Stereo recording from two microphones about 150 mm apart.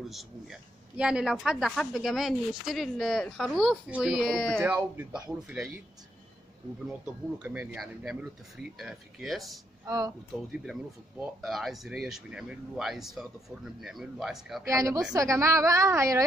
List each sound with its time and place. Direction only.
0.1 s speech: centre (ahead or behind)
4.6 s speech: 10° right (ahead or behind)
6.9 s speech: 10° right (ahead or behind)
9.8 s a woman's voice: 25° right (ahead or behind)
10.5 s speech: 5° right (ahead or behind)
14.7 s a woman's voice: 20° right (ahead or behind)